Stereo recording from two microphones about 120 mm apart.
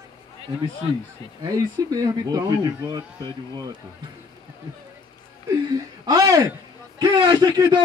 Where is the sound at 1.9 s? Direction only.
30° right (ahead or behind).